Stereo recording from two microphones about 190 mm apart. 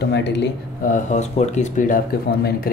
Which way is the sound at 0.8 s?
40° left (ahead or behind).